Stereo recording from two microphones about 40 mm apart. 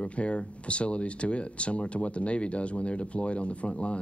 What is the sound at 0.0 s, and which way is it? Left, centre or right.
Speech, left.